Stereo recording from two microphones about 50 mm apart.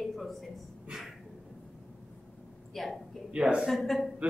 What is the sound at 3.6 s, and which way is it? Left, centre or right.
Speech, centre.